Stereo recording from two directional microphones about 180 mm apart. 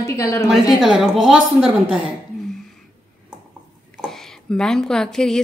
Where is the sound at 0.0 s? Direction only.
15° left (ahead or behind).